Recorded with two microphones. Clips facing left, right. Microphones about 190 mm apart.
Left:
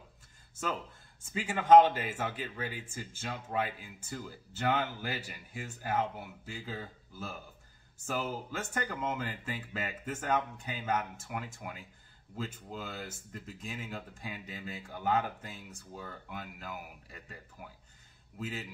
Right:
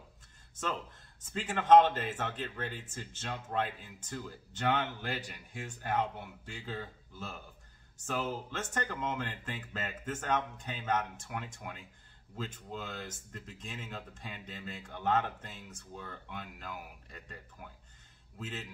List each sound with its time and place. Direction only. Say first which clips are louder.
1.3 s speech: left 2 dB; 10° left (ahead or behind)